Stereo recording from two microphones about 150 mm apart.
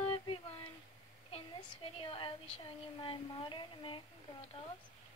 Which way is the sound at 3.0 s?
35° left (ahead or behind).